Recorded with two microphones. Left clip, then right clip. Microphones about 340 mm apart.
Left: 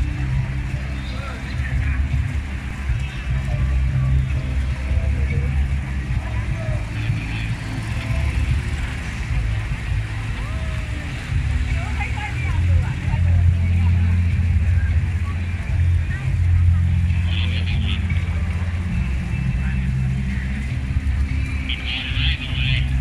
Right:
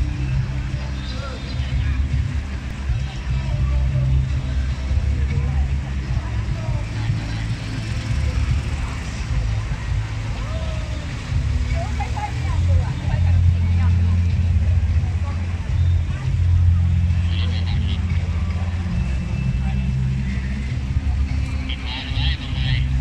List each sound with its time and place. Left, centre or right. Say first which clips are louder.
21.8 s vehicle: left 3 dB; centre